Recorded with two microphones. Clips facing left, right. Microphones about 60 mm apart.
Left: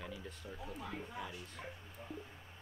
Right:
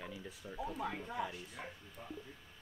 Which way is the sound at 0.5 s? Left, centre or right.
Centre.